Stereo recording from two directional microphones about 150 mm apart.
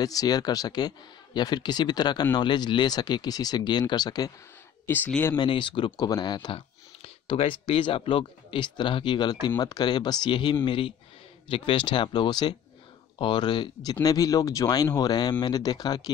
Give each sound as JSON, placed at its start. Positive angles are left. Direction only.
{"t": 0.0, "sound": "speech", "side_deg": 25}
{"t": 4.8, "sound": "speech", "side_deg": 10}
{"t": 5.4, "sound": "speech", "side_deg": 35}